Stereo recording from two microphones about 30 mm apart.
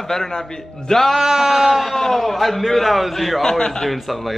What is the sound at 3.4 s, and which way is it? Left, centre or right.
Speech, centre.